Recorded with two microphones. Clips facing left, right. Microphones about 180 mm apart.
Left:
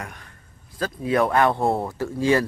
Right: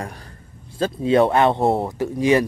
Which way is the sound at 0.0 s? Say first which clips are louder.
Right 5 dB; 35° right (ahead or behind).